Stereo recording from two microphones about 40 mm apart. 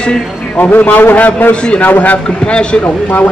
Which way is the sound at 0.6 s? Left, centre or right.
Left.